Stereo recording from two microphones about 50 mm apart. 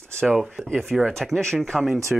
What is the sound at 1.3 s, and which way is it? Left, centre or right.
Speech, centre.